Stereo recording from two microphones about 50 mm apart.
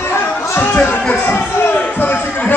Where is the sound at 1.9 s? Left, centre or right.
Left.